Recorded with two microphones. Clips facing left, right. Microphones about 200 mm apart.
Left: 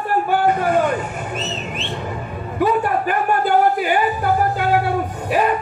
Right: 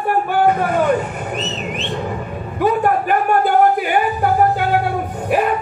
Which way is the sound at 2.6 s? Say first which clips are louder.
Right 2 dB; 50° right (ahead or behind).